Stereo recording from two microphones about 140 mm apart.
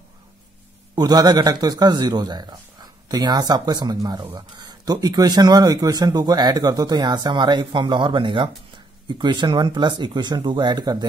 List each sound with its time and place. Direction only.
0.9 s speech: 30° right (ahead or behind)